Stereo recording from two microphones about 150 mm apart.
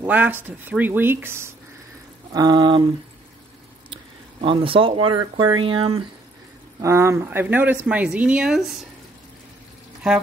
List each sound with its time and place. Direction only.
0.0 s speech: 10° right (ahead or behind)
2.3 s speech: 30° right (ahead or behind)
3.9 s speech: 35° right (ahead or behind)
6.8 s speech: 20° right (ahead or behind); by 8.7 s centre (ahead or behind)